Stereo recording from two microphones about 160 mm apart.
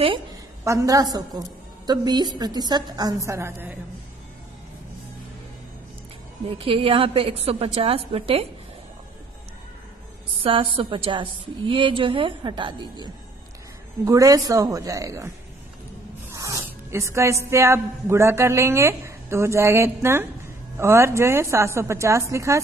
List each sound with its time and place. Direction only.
0.7 s a woman's voice: 20° right (ahead or behind)
6.6 s a woman's voice: 35° right (ahead or behind)
10.4 s a woman's voice: 35° right (ahead or behind); by 22.6 s 20° right (ahead or behind)